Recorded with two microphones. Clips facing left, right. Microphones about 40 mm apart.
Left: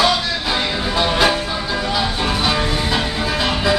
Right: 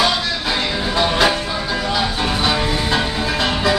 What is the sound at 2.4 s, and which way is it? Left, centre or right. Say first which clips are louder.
Music: even; centre.